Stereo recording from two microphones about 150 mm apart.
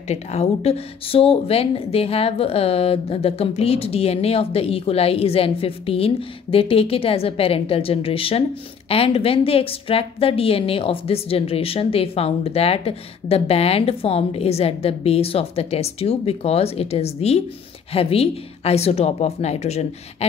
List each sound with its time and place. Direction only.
0.1 s a woman's voice: 45° left (ahead or behind)